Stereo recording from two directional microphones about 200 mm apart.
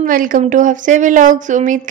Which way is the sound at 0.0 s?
45° right (ahead or behind).